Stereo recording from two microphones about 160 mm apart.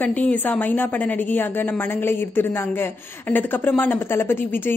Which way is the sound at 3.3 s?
10° left (ahead or behind).